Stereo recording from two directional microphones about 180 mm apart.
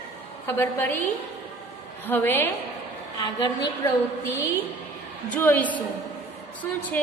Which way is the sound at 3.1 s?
25° left (ahead or behind).